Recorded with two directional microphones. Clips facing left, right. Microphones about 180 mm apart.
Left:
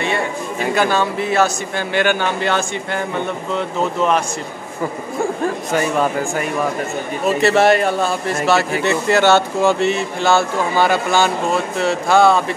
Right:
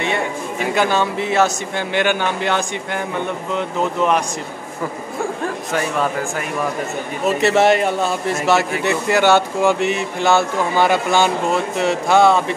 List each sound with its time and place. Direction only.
0.7 s speech: 20° right (ahead or behind)
5.4 s speech: centre (ahead or behind)
7.4 s speech: 20° right (ahead or behind)